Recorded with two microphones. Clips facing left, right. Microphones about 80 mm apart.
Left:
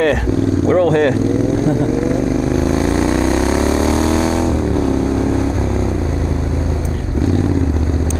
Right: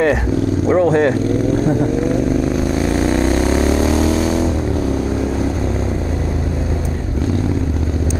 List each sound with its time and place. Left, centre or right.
0.7 s speech: centre
3.1 s vehicle: left
3.6 s music: left